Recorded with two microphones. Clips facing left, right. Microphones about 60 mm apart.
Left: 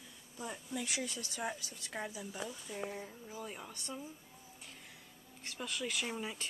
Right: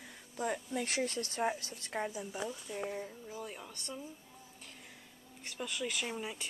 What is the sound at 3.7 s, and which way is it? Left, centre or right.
Speech, centre.